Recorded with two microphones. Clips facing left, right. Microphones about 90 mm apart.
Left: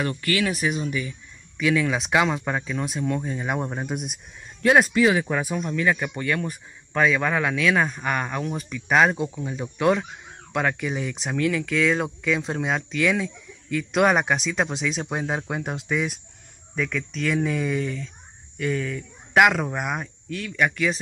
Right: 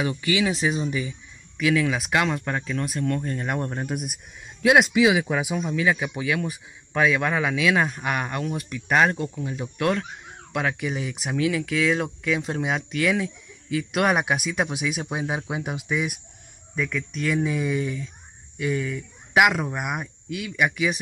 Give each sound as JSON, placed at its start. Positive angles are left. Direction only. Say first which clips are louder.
{"t": 0.0, "sound": "speech", "louder": "right 1 dB", "side_deg": -15}
{"t": 1.6, "sound": "speech", "louder": "even", "side_deg": 0}